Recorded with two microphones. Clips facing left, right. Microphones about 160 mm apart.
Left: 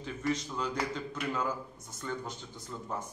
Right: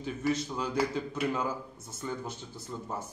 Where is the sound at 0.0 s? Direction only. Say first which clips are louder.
Right 3 dB; 5° right (ahead or behind).